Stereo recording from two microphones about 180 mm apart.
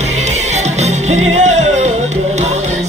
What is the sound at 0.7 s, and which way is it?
Music, 40° right (ahead or behind).